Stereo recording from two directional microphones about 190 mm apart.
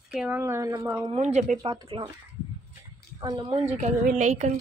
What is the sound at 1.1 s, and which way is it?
Speech, 35° right (ahead or behind).